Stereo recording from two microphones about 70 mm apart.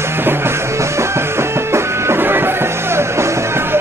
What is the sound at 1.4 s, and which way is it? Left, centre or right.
Music, right.